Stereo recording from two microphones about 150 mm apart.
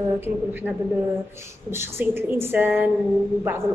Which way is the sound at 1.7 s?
15° right (ahead or behind).